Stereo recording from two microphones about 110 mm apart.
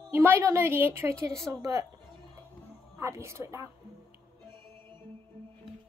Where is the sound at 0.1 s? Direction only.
20° right (ahead or behind).